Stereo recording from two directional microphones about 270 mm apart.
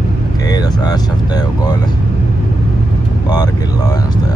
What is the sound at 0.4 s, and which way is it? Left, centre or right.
Speech, centre.